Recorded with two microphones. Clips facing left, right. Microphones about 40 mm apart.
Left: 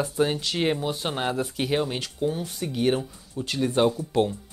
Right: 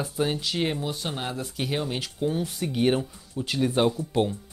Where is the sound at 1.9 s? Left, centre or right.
Centre.